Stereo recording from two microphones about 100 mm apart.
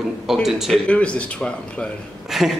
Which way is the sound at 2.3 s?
5° right (ahead or behind).